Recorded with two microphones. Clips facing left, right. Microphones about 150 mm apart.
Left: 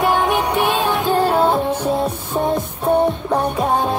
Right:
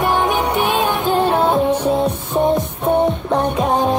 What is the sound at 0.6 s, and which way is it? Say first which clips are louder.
Music: even; 20° right (ahead or behind).